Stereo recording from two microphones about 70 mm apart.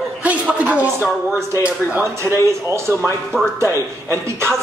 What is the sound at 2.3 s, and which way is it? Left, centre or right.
Speech, right.